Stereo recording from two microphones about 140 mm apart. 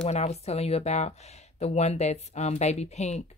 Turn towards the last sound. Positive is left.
turn(degrees=55)  # may be behind; listen again after turning